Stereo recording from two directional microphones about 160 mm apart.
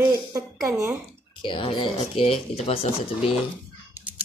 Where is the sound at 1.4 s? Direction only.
30° left (ahead or behind).